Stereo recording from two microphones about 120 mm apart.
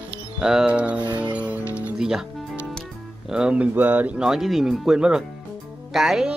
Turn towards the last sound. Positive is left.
turn(degrees=-5)  # may be behind; listen again after turning